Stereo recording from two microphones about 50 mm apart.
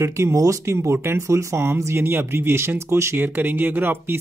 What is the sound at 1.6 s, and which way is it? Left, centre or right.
Speech, right.